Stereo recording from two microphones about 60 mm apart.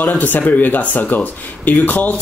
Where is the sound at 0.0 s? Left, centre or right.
Left.